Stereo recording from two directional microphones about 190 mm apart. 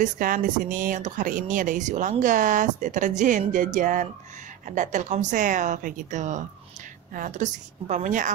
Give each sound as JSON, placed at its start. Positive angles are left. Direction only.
{"t": 0.0, "sound": "a woman's voice", "side_deg": -45}